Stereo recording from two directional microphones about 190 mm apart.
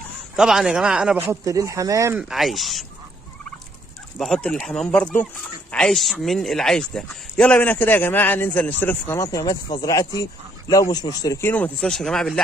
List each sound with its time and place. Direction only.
0.4 s speech: centre (ahead or behind)
2.1 s speech: centre (ahead or behind)
4.2 s speech: 5° left (ahead or behind); by 11.5 s 20° left (ahead or behind)
11.5 s speech: 5° left (ahead or behind)